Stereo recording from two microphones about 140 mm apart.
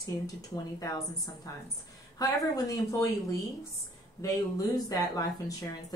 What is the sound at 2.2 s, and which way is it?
Speech, 25° left (ahead or behind).